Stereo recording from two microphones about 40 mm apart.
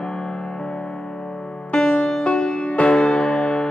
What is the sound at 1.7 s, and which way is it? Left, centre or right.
Music, left.